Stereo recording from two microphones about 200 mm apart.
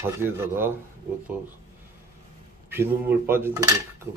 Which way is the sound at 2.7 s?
10° right (ahead or behind).